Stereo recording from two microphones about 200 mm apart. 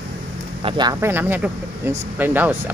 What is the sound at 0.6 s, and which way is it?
Speech, 25° right (ahead or behind).